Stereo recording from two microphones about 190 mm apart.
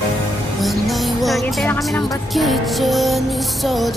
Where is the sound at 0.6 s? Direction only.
Centre (ahead or behind).